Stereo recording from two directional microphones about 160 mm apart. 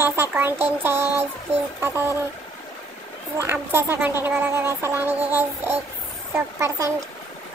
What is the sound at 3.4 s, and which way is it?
A woman's voice, 15° right (ahead or behind).